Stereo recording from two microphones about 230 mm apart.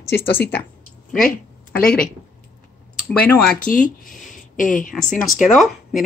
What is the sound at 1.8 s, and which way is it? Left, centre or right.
Speech, centre.